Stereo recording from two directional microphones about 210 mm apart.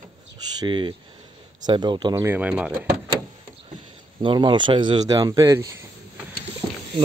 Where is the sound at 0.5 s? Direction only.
20° right (ahead or behind).